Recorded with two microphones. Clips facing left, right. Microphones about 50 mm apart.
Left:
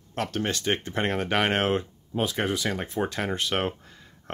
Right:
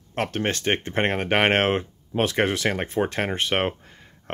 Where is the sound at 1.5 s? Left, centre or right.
Right.